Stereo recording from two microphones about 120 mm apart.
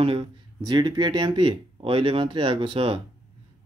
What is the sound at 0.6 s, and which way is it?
Speech, 35° right (ahead or behind).